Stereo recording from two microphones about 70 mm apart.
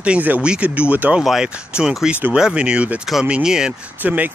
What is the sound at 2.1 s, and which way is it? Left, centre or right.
Speech, right.